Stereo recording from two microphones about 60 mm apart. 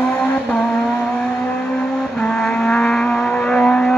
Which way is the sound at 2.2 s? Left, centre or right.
Centre.